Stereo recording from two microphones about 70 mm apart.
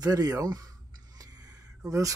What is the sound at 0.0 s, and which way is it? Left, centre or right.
Speech, right.